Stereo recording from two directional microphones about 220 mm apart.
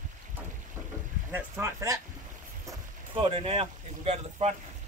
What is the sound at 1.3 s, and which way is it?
Speech, 10° right (ahead or behind).